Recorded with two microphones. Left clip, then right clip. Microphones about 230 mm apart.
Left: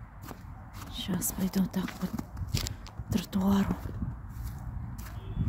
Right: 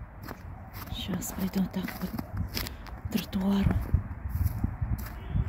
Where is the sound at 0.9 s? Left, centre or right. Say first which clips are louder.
Left 1 dB; centre.